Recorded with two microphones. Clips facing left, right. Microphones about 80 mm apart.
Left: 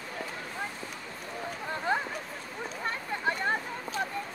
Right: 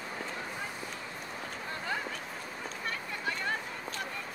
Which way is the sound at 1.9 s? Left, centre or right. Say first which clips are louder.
Left 6 dB; left.